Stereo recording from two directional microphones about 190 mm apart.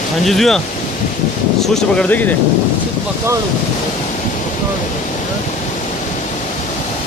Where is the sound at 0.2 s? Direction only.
Centre (ahead or behind).